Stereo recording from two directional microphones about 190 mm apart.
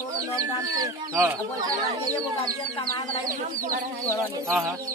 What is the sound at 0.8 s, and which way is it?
Speech, 20° right (ahead or behind).